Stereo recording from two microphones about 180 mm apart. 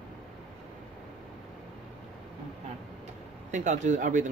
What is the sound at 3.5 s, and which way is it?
Speech, 45° right (ahead or behind).